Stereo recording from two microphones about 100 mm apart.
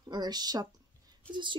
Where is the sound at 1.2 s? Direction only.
10° left (ahead or behind).